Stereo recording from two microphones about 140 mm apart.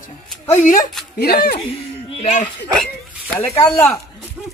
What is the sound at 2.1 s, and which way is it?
Speech, 50° left (ahead or behind).